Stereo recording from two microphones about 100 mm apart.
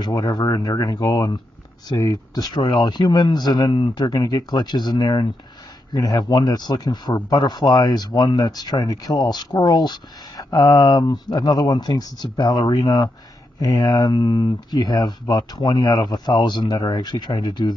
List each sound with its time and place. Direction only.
0.0 s speech: 45° left (ahead or behind)